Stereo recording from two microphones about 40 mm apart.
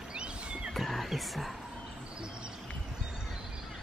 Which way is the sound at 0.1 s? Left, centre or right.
Right.